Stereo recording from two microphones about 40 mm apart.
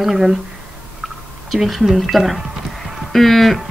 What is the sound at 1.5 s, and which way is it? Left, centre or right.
Speech, centre.